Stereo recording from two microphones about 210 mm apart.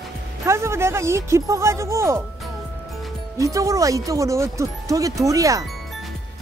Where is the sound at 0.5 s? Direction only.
10° right (ahead or behind).